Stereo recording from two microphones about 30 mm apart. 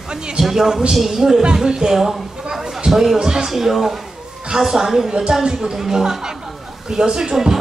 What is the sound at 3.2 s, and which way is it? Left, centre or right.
Speech, right.